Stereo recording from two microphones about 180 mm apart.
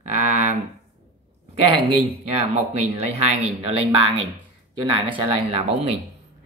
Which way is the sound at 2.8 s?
35° right (ahead or behind).